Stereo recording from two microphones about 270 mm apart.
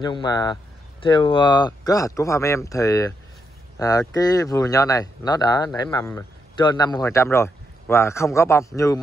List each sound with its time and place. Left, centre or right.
0.0 s a man's voice: centre